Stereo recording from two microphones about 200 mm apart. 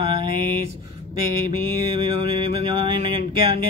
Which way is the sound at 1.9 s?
25° right (ahead or behind).